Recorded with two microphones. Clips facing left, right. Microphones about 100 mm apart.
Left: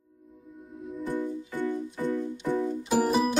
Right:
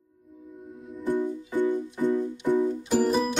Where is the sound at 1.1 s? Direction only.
15° right (ahead or behind).